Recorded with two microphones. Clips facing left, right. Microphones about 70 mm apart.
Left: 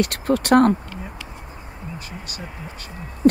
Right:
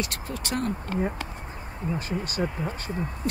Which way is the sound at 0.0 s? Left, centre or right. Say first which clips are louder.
Left 12 dB; left.